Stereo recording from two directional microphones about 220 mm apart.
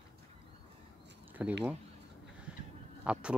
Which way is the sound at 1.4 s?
5° right (ahead or behind).